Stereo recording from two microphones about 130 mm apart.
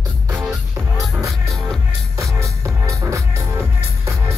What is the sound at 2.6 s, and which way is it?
Music, 25° right (ahead or behind).